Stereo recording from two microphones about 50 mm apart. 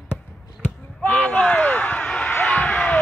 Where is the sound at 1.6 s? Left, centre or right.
Left.